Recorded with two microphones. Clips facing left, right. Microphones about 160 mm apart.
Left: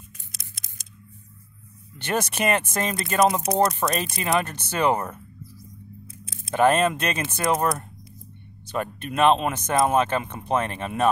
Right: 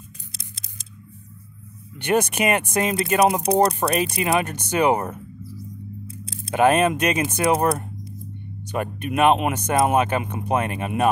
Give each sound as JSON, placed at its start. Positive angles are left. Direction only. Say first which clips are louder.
{"t": 0.3, "sound": "scissors", "louder": "right 5 dB", "side_deg": -30}
{"t": 2.0, "sound": "speech", "louder": "right 5 dB", "side_deg": -15}
{"t": 6.0, "sound": "a sound", "louder": "right 7 dB", "side_deg": -35}
{"t": 6.5, "sound": "speech", "louder": "right 2 dB", "side_deg": -15}
{"t": 7.5, "sound": "speech", "louder": "right 2 dB", "side_deg": -30}
{"t": 8.7, "sound": "speech", "louder": "right 2 dB", "side_deg": -15}